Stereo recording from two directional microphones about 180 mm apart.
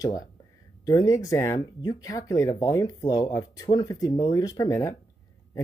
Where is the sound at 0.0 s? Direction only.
20° left (ahead or behind).